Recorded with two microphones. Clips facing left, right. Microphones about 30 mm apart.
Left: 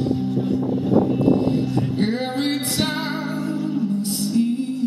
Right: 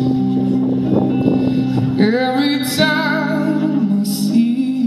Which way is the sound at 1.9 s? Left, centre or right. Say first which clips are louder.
Right 8 dB; right.